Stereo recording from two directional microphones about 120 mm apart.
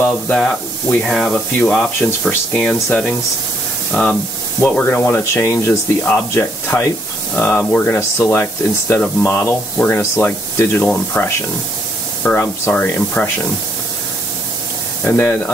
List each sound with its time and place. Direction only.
0.0 s speech: 5° left (ahead or behind)
15.0 s speech: 20° left (ahead or behind)